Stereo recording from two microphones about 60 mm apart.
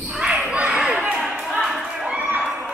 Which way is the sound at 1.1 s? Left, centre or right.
Centre.